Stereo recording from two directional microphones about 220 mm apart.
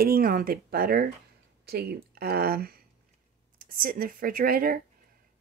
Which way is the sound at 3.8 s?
40° right (ahead or behind).